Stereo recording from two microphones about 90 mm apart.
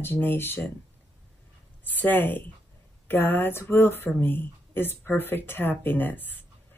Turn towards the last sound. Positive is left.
turn(degrees=20)  # may be behind; listen again after turning